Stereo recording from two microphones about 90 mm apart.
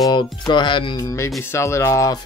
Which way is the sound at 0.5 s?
60° left (ahead or behind).